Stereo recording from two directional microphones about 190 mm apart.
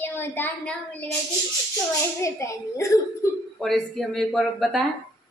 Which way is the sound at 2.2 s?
15° left (ahead or behind).